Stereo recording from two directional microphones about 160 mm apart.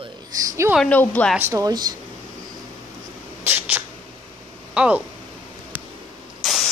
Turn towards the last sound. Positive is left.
turn(degrees=0)  # may be behind; listen again after turning